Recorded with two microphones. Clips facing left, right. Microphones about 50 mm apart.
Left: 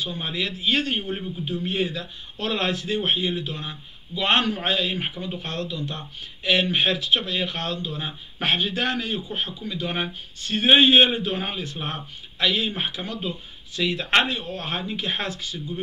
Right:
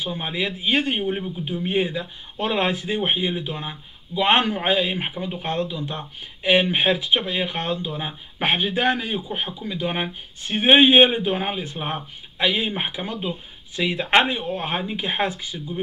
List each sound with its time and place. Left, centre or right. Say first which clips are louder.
0.0 s a man's voice: right 2 dB; centre